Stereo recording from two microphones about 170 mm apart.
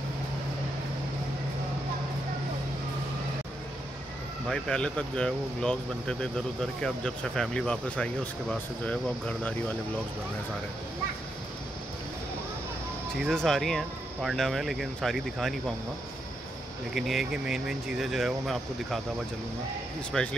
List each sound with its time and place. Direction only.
4.5 s speech: 5° left (ahead or behind)
13.2 s speech: 5° left (ahead or behind)
16.9 s speech: centre (ahead or behind)
20.1 s speech: centre (ahead or behind)